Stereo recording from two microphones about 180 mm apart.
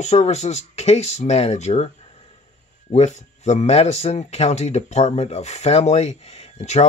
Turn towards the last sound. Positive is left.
turn(degrees=40)  # may be behind; listen again after turning